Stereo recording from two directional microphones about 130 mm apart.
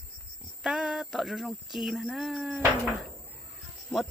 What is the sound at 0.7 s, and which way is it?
Speech, 5° right (ahead or behind).